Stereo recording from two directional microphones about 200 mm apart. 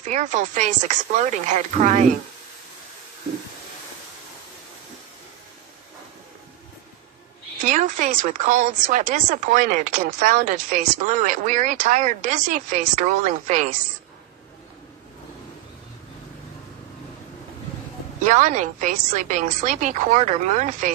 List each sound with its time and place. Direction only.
0.0 s speech: 35° right (ahead or behind)
7.6 s speech: 40° right (ahead or behind)
18.2 s speech: 40° right (ahead or behind)